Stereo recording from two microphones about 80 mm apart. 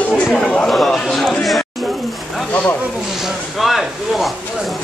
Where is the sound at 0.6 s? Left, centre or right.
Centre.